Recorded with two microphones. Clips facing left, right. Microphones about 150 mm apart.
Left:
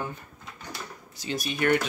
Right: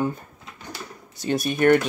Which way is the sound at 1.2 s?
55° right (ahead or behind).